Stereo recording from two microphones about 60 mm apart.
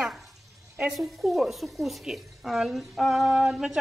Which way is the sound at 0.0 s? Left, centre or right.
Centre.